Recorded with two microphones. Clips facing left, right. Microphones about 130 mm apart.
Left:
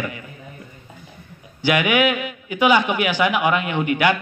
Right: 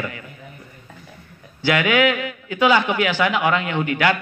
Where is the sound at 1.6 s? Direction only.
15° left (ahead or behind).